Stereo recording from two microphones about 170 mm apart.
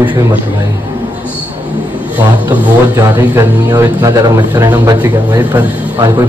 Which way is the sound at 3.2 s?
20° right (ahead or behind).